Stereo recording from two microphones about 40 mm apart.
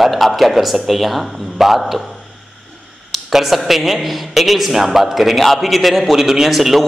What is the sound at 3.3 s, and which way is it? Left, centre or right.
A man's voice, centre.